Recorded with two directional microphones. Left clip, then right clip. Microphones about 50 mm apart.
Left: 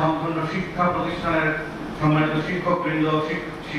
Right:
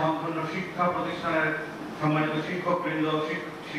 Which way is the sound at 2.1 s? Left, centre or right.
Centre.